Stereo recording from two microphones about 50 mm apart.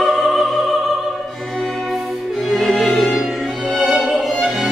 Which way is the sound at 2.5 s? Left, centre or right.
Centre.